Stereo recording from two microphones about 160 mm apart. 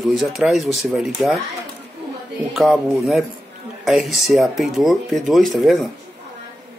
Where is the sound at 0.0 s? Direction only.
Centre (ahead or behind).